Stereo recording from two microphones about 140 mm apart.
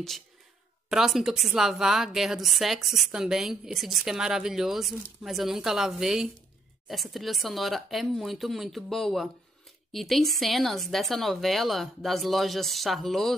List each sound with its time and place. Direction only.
0.8 s a woman's voice: 5° right (ahead or behind)